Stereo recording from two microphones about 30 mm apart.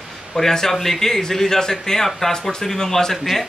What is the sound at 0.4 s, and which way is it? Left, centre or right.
A man's voice, centre.